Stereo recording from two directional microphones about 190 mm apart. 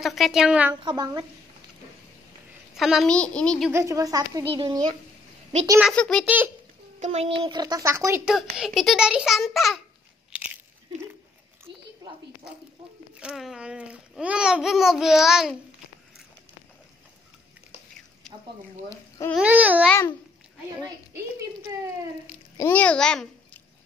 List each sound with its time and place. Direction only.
0.0 s speech: centre (ahead or behind)
0.8 s speech: 20° right (ahead or behind)
2.8 s speech: centre (ahead or behind)
3.7 s speech: 15° right (ahead or behind)
5.8 s speech: centre (ahead or behind)
6.2 s babbling: 10° right (ahead or behind)
7.0 s speech: 35° right (ahead or behind); by 8.2 s 15° right (ahead or behind)
8.5 s speech: centre (ahead or behind)
10.3 s biting: 5° right (ahead or behind)
13.2 s speech: 5° right (ahead or behind)
18.9 s speech: 15° left (ahead or behind)
19.3 s babbling: 5° right (ahead or behind)
19.9 s a child's voice: 10° left (ahead or behind)
22.6 s a child's voice: 10° left (ahead or behind)